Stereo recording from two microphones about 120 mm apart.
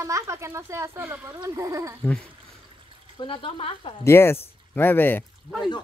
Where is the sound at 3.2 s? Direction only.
45° left (ahead or behind).